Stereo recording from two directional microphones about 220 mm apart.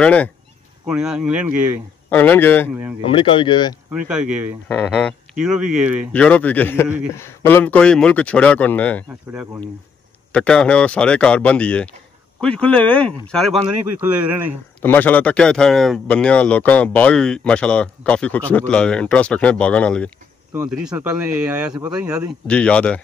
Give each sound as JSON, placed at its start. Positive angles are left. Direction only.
{"t": 0.0, "sound": "speech", "side_deg": 5}
{"t": 0.8, "sound": "speech", "side_deg": -5}
{"t": 2.0, "sound": "speech", "side_deg": 10}
{"t": 3.1, "sound": "speech", "side_deg": 25}
{"t": 3.9, "sound": "speech", "side_deg": -5}
{"t": 4.6, "sound": "speech", "side_deg": 5}
{"t": 9.3, "sound": "speech", "side_deg": -10}
{"t": 10.3, "sound": "speech", "side_deg": 5}
{"t": 14.8, "sound": "speech", "side_deg": 10}